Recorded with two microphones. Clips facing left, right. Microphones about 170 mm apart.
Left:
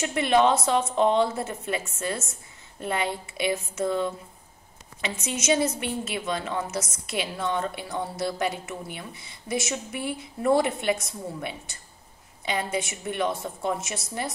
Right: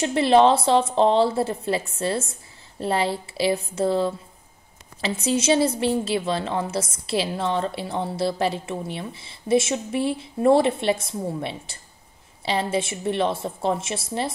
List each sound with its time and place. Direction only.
0.0 s a woman's voice: 30° right (ahead or behind)